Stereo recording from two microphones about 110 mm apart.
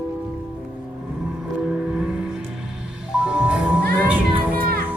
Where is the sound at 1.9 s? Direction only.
5° right (ahead or behind).